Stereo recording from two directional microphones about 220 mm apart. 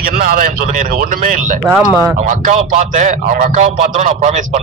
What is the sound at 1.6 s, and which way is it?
Speech, 10° right (ahead or behind).